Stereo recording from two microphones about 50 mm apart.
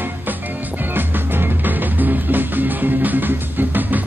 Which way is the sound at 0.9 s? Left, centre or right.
Right.